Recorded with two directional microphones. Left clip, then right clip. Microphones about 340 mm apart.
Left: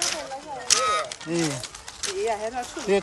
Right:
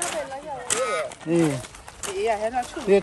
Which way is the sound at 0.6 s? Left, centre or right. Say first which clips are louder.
Left 3 dB; centre.